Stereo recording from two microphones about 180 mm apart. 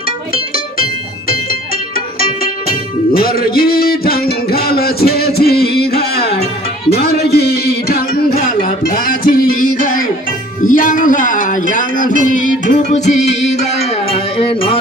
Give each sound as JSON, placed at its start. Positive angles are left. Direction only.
{"t": 3.1, "sound": "music", "side_deg": 55}
{"t": 10.6, "sound": "speech", "side_deg": 50}